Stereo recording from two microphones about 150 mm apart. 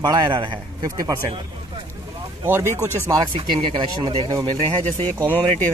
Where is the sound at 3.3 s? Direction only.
30° right (ahead or behind).